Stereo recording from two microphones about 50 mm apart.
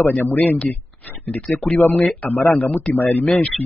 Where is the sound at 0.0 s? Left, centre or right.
Left.